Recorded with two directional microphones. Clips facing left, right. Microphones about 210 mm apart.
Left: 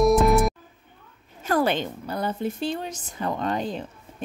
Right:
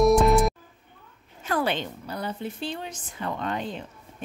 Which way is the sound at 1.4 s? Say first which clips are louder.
Left 4 dB; 45° left (ahead or behind).